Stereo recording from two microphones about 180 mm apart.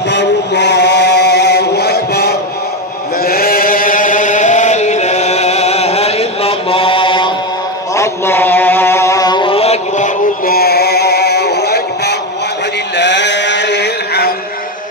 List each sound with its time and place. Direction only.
0.1 s mantra: 75° left (ahead or behind)
3.2 s chant: 55° left (ahead or behind); by 7.3 s 25° left (ahead or behind)
7.9 s mantra: 15° left (ahead or behind); by 12.2 s 65° left (ahead or behind)
12.9 s music: 75° left (ahead or behind)